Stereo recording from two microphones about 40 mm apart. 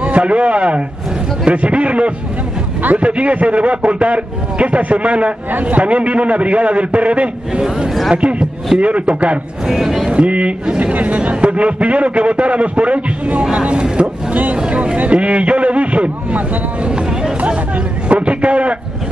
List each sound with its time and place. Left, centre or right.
0.0 s a man's voice: right
5.5 s a man's voice: right
9.7 s speech: centre
10.1 s a man's voice: right
14.3 s a man's voice: right
18.0 s speech: right